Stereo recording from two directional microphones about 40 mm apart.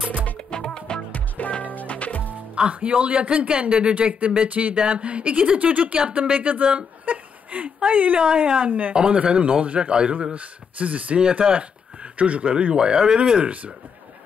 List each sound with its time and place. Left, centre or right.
0.5 s music: left
1.1 s music: left
2.7 s speech: right
6.7 s a sound: right
8.2 s speech: right
10.3 s speech: right
11.1 s speech: right